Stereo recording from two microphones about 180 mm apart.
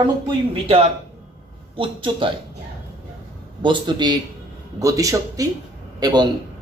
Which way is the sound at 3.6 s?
25° right (ahead or behind).